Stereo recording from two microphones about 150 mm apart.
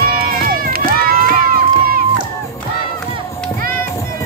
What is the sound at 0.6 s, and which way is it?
Run, 80° right.